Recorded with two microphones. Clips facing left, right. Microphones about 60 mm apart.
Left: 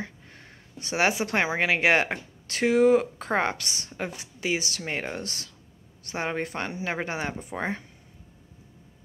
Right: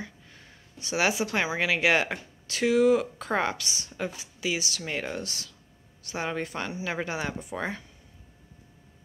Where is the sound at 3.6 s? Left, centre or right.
Left.